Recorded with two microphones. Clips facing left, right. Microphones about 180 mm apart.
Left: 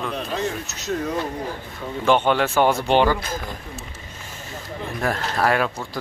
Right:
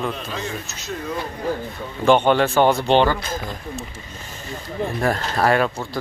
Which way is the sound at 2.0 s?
Centre (ahead or behind).